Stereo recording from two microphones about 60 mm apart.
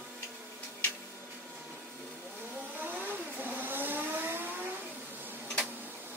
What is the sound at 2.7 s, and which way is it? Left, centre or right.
Vehicle, right.